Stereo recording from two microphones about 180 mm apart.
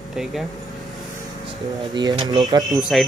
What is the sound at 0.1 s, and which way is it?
Speech, centre (ahead or behind).